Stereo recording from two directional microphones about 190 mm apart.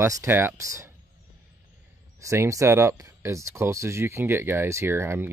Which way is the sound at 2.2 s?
15° right (ahead or behind).